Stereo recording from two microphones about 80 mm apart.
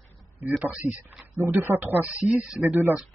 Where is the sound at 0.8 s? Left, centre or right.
Centre.